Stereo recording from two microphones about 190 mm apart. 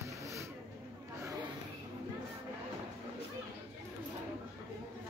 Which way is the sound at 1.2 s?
20° right (ahead or behind).